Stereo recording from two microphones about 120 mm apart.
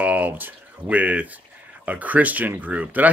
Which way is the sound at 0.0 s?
15° right (ahead or behind).